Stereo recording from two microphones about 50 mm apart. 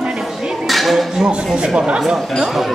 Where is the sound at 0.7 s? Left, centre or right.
Centre.